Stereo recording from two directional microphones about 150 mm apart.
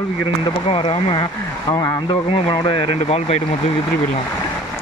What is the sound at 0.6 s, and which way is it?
Speech, 35° left (ahead or behind).